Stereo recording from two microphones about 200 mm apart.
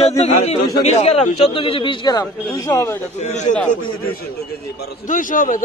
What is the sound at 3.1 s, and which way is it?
Speech, 35° left (ahead or behind).